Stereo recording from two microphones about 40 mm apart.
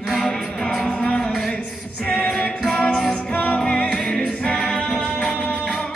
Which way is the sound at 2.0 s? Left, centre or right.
Left.